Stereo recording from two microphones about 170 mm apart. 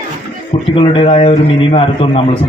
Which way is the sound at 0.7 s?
30° left (ahead or behind).